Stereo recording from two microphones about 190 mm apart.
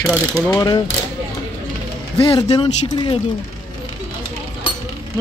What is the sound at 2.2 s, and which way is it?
Speech, 30° left (ahead or behind).